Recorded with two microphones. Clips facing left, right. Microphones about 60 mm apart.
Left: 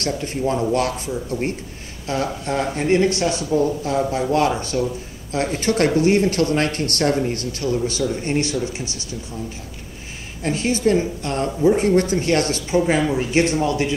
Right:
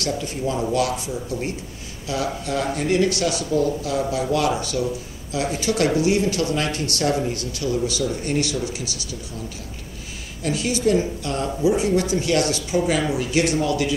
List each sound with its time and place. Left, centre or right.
0.0 s a woman's voice: left
10.4 s a woman's voice: left